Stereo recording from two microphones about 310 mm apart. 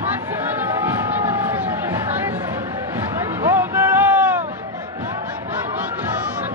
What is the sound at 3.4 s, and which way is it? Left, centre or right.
Boat, centre.